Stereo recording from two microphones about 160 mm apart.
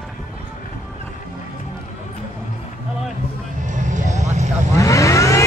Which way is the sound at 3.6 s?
50° right (ahead or behind).